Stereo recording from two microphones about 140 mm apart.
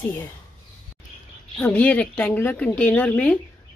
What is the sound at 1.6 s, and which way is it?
Speech, 10° left (ahead or behind).